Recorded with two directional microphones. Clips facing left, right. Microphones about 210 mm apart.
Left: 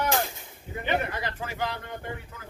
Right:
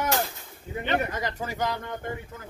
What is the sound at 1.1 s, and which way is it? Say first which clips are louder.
Speech: right 2 dB; 40° right (ahead or behind).